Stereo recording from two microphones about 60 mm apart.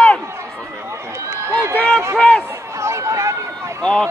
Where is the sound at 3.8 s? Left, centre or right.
Centre.